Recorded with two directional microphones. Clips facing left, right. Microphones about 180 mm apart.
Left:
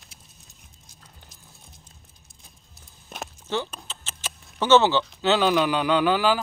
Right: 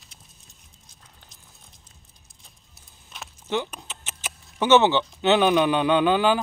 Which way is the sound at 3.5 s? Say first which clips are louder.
Right 2 dB; 15° right (ahead or behind).